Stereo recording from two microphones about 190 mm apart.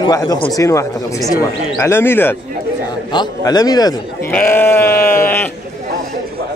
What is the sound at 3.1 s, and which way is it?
Speech, 20° left (ahead or behind).